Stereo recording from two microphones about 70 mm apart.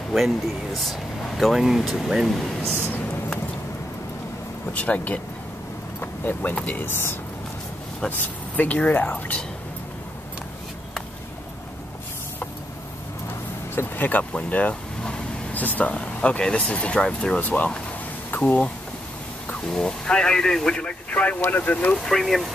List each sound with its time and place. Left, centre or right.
1.4 s speech: centre
4.7 s speech: left
5.9 s vehicle: left
6.6 s speech: left
8.2 s speech: left
13.7 s speech: left
14.3 s vehicle: centre
15.6 s speech: left
17.4 s speech: left
21.9 s speech: centre